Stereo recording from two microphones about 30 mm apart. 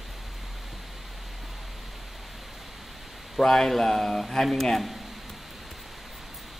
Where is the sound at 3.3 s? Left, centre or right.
Centre.